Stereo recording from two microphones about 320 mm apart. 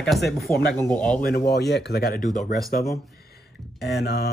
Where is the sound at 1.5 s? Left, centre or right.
Left.